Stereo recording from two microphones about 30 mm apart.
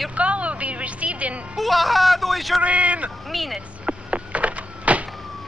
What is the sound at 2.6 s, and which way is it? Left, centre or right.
Speech, right.